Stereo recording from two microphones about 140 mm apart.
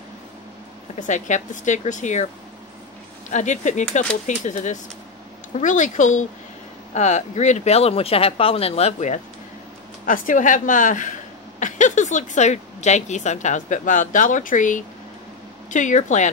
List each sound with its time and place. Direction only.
0.9 s speech: 60° left (ahead or behind)
3.3 s speech: 60° left (ahead or behind)
10.0 s a woman's voice: 75° left (ahead or behind)